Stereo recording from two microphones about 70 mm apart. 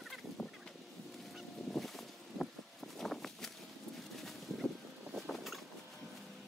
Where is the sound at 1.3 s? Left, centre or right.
Centre.